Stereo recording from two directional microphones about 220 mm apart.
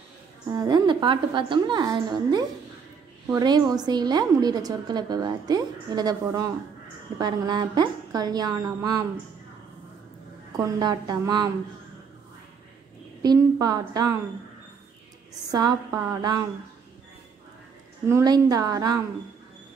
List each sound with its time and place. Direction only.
0.5 s a woman's voice: 15° right (ahead or behind)
10.5 s a woman's voice: 20° right (ahead or behind)
13.2 s a woman's voice: 15° right (ahead or behind)
15.5 s a woman's voice: 20° right (ahead or behind)
18.0 s a woman's voice: 15° right (ahead or behind)